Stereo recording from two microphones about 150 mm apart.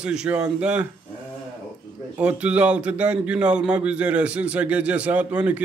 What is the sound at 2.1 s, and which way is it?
A man's voice, 10° right (ahead or behind).